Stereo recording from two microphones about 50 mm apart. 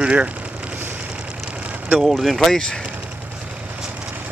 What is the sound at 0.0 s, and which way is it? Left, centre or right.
Speech, right.